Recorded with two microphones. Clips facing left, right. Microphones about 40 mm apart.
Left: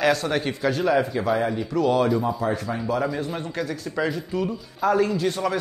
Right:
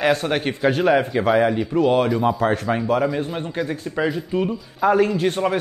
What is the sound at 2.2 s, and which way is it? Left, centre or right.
Speech, right.